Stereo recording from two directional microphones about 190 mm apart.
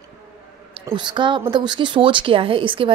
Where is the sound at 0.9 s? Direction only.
25° right (ahead or behind).